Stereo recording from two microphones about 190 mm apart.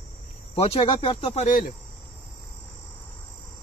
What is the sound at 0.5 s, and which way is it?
Speech, 30° left (ahead or behind).